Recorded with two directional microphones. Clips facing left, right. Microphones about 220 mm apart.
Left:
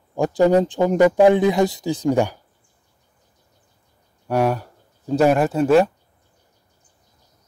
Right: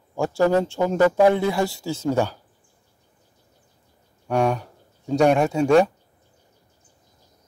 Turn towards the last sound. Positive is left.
turn(degrees=0)  # may be behind; listen again after turning